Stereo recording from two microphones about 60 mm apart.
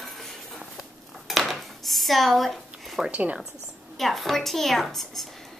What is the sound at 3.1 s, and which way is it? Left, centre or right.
Speech, right.